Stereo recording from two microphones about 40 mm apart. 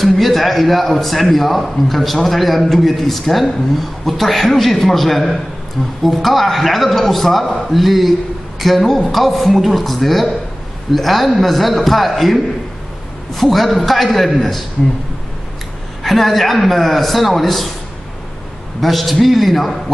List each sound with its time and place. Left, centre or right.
0.0 s a man's voice: centre
16.0 s a man's voice: centre
18.8 s a man's voice: centre